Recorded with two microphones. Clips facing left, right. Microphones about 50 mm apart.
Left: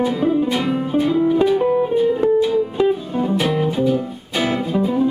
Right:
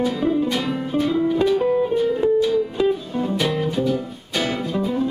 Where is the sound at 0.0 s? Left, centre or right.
Centre.